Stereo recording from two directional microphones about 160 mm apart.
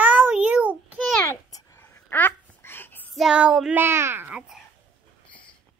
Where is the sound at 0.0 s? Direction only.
10° right (ahead or behind).